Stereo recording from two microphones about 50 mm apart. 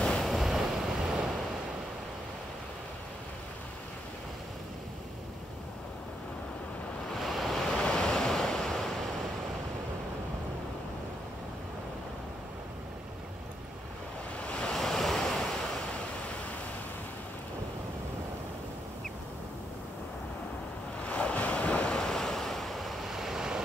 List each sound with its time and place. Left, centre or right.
0.2 s waves: centre
7.1 s waves: centre
14.5 s waves: centre
14.8 s waves: centre
21.0 s waves: left; by 23.6 s centre